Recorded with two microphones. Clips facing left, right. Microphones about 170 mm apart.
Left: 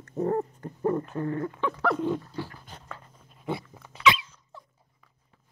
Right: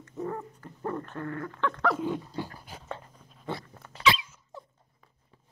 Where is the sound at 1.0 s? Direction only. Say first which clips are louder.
Left 6 dB; 15° left (ahead or behind).